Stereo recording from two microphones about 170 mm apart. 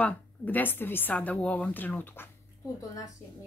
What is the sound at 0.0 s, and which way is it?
A woman's voice, 10° left (ahead or behind).